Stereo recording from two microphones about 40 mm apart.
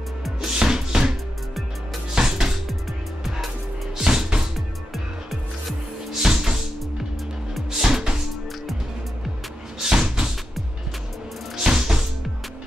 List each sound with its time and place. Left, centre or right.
0.6 s music: centre
2.1 s music: centre
4.0 s music: centre
4.9 s music: centre
6.2 s music: centre
7.7 s music: centre
9.8 s slam: centre
11.5 s music: centre